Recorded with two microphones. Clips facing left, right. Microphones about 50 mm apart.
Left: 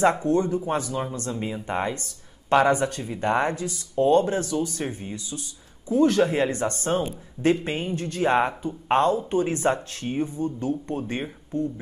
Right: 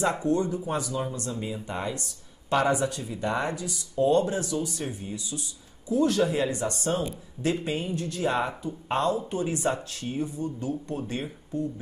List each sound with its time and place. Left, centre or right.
0.0 s speech: left